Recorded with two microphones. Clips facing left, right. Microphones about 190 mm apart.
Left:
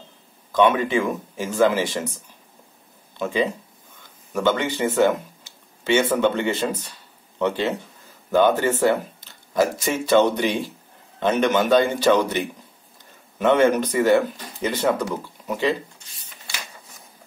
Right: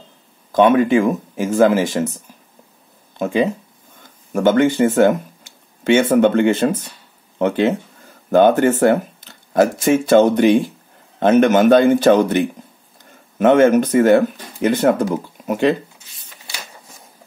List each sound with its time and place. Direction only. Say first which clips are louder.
0.5 s speech: right 6 dB; 45° right (ahead or behind)
4.3 s speech: right 7 dB; 50° right (ahead or behind)